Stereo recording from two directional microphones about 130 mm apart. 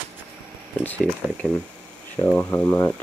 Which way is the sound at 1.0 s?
5° left (ahead or behind).